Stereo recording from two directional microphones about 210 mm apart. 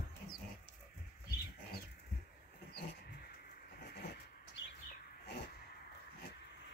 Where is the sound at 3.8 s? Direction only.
50° left (ahead or behind).